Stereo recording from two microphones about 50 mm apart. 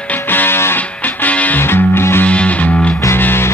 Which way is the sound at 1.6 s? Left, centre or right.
Left.